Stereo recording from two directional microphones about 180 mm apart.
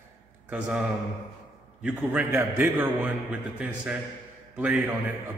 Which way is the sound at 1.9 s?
10° right (ahead or behind).